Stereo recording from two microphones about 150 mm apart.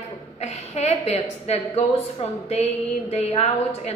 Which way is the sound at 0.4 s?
50° left (ahead or behind).